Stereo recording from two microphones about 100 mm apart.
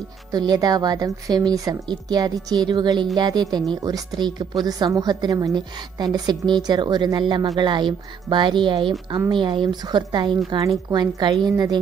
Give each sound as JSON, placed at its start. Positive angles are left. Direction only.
{"t": 0.3, "sound": "a woman's voice", "side_deg": -40}